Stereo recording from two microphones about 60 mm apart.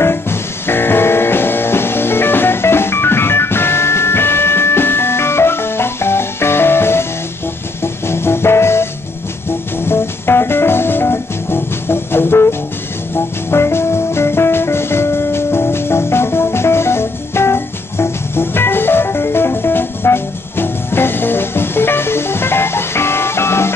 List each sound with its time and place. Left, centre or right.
0.0 s music: left